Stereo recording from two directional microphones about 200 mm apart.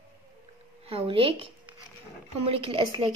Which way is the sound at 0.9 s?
25° right (ahead or behind).